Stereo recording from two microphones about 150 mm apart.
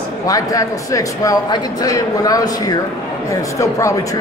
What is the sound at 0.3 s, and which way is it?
A man's voice, 25° left (ahead or behind).